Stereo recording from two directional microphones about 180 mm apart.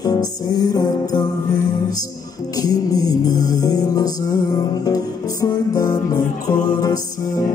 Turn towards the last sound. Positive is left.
turn(degrees=20)  # may be behind; listen again after turning